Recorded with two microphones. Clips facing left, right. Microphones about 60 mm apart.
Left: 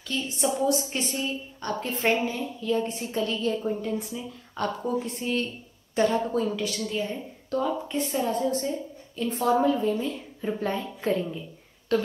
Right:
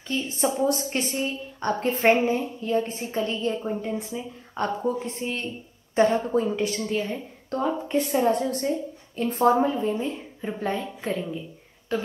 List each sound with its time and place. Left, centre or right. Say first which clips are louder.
0.1 s a woman's voice: right 2 dB; right
10.5 s a woman's voice: right 1 dB; centre
11.9 s speech: left 3 dB; centre